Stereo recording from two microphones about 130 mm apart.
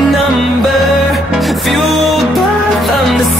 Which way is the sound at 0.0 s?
Centre (ahead or behind).